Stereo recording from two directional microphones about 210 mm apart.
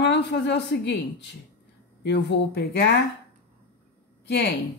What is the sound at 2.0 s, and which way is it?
Speech, 55° left (ahead or behind).